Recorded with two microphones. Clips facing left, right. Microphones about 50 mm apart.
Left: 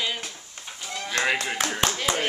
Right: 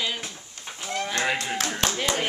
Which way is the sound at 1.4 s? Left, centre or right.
Centre.